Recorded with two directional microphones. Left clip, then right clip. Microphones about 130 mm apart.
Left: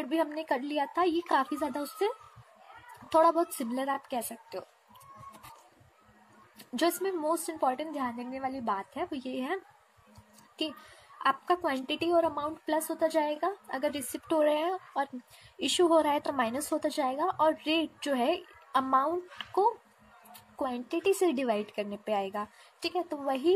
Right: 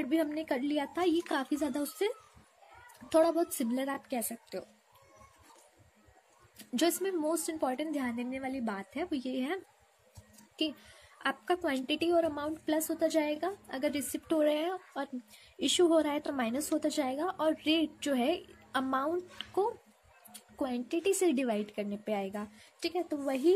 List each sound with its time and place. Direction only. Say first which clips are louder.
0.0 s a child's voice: left 1 dB; 30° right (ahead or behind)
6.6 s a child's voice: left 1 dB; 25° right (ahead or behind)
10.6 s a child's voice: right 1 dB; 25° right (ahead or behind)